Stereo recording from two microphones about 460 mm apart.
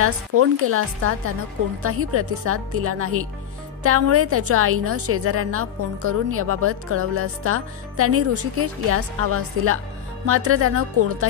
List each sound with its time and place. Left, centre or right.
0.0 s a woman's voice: right